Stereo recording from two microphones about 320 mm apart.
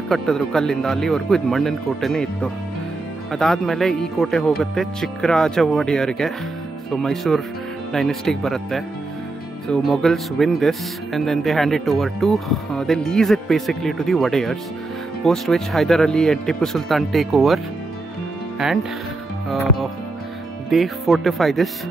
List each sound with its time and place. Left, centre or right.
0.1 s speech: centre
18.6 s speech: centre
20.7 s speech: centre